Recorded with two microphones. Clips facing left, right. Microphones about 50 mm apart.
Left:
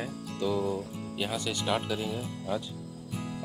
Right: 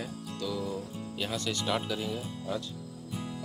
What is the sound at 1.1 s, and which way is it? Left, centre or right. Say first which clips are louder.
Speech: left 1 dB; centre.